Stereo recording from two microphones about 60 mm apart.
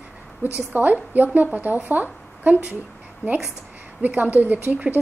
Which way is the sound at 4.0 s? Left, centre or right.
Right.